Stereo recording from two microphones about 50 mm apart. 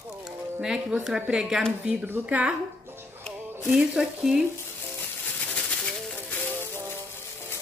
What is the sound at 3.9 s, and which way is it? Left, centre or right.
Speech, centre.